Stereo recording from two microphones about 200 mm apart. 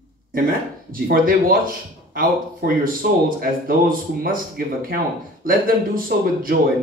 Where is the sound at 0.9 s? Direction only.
45° right (ahead or behind).